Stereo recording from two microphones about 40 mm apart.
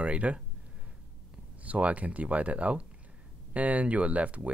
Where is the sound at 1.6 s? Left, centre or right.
Right.